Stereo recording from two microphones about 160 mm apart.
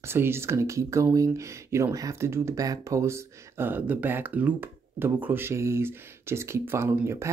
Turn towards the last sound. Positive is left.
turn(degrees=-15)  # may be behind; listen again after turning